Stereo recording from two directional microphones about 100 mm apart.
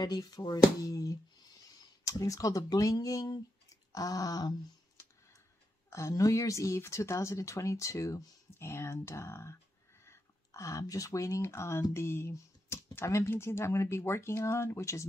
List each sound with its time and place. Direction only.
0.0 s speech: 45° left (ahead or behind)
3.9 s a sound: 35° left (ahead or behind)
5.9 s speech: 30° left (ahead or behind)